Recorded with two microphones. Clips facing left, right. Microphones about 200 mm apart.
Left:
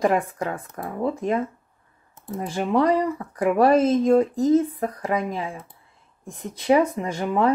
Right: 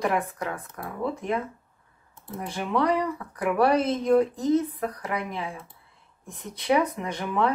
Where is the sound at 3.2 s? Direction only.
30° left (ahead or behind).